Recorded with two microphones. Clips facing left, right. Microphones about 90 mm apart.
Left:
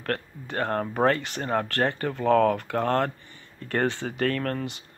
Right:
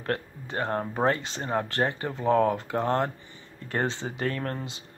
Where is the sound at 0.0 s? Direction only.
20° right (ahead or behind).